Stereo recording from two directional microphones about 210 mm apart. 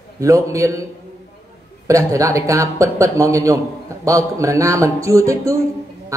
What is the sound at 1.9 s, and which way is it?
A man's voice, 15° right (ahead or behind).